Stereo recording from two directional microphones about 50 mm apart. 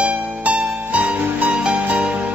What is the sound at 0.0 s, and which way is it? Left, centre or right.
Music, right.